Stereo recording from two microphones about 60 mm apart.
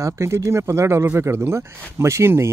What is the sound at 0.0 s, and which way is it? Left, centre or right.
Speech, right.